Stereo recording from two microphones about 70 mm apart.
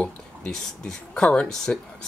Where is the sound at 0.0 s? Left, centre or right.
Centre.